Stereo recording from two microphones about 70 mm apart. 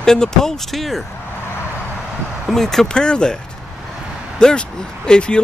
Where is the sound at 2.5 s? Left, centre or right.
Centre.